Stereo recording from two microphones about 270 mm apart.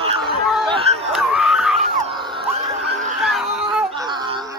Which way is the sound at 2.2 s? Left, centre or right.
Centre.